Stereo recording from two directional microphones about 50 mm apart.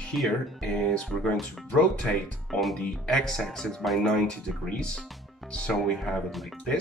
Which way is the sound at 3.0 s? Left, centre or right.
Centre.